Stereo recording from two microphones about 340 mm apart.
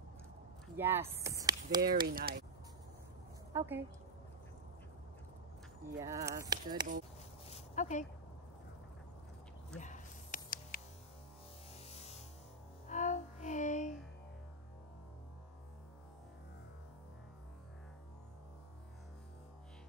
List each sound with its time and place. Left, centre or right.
0.7 s speech: centre
1.8 s speech: right
3.5 s speech: centre
5.9 s speech: centre
7.4 s a sound: centre
9.8 s a sound: left
11.9 s music: centre